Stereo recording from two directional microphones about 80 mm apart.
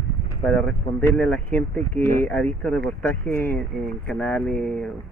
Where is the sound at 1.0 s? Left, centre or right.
Left.